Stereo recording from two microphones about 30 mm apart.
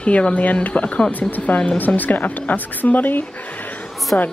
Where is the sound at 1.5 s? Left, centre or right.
Left.